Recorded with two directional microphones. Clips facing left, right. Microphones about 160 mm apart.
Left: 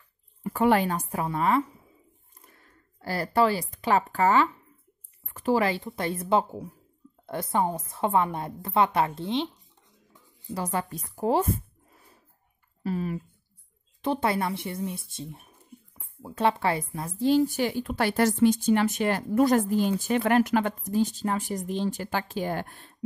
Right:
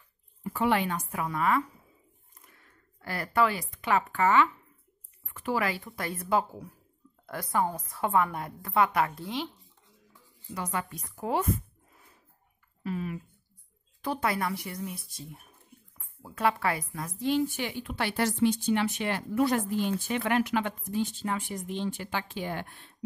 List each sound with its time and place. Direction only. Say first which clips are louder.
0.4 s a woman's voice: left 4 dB; 50° left (ahead or behind); by 9.7 s 20° left (ahead or behind)
10.5 s a woman's voice: left 4 dB; 35° left (ahead or behind)
12.8 s a woman's voice: left 4 dB; 35° left (ahead or behind)